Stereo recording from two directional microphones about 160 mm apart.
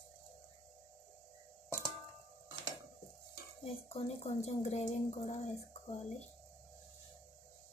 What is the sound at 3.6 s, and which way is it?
Speech, 40° left (ahead or behind).